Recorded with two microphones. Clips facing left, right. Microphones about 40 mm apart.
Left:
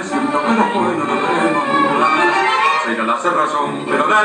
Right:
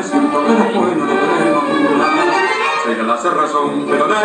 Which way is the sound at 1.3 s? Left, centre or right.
Centre.